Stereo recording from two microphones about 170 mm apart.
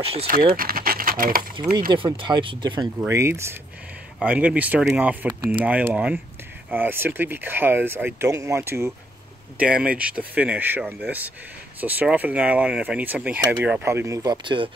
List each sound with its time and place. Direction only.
0.0 s speech: 35° right (ahead or behind)
0.6 s speech: 60° right (ahead or behind)
1.9 s speech: 30° right (ahead or behind)
3.1 s speech: 15° right (ahead or behind)